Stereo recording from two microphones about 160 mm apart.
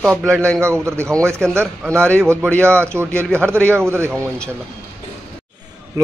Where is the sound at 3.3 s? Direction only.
15° right (ahead or behind).